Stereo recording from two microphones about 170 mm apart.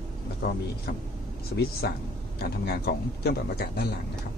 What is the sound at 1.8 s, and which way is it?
A man's voice, 70° left (ahead or behind).